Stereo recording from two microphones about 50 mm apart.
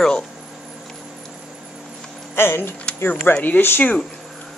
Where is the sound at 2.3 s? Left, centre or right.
Left.